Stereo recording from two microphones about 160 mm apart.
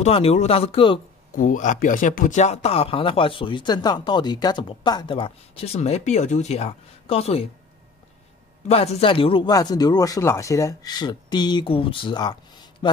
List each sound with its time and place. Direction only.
0.0 s speech: 40° left (ahead or behind)
1.3 s speech: 55° left (ahead or behind); by 7.4 s 40° left (ahead or behind)
8.6 s a man's voice: 40° left (ahead or behind)